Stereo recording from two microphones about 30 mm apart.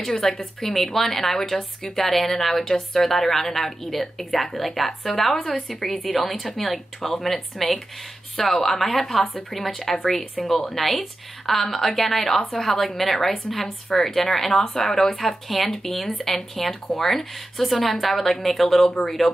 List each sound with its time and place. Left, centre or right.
0.1 s a woman's voice: left
0.7 s a woman's voice: centre